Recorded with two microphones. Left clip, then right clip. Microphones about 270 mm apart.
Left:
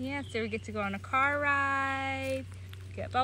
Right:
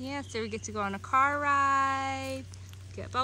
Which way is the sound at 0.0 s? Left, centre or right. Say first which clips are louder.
Left 1 dB; centre.